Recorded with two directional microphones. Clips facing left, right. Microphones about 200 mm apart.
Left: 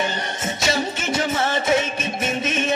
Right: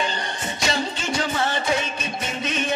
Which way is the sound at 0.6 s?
20° left (ahead or behind).